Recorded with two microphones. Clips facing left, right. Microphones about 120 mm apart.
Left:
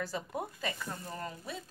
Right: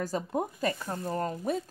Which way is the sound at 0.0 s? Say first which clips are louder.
Right 6 dB; 45° right (ahead or behind).